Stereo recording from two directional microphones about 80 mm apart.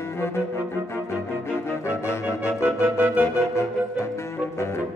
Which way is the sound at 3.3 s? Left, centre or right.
Left.